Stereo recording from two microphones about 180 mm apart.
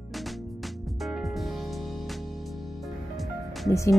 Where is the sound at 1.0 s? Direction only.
Centre (ahead or behind).